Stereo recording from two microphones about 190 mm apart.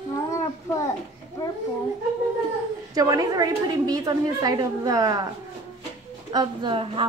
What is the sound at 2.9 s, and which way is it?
A woman's voice, 20° right (ahead or behind).